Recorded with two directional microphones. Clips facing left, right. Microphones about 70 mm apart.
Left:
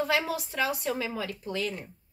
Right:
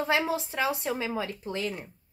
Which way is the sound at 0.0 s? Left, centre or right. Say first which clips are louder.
Right 1 dB; right.